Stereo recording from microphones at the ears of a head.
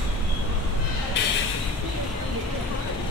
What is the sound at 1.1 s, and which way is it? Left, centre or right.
Vehicle, left.